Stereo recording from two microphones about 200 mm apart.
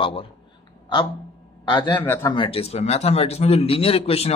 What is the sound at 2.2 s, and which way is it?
Speech, 25° left (ahead or behind).